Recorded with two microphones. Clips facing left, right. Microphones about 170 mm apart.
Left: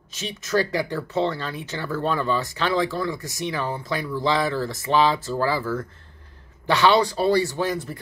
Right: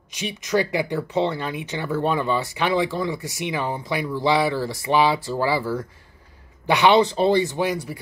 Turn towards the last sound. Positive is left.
turn(degrees=-15)  # may be behind; listen again after turning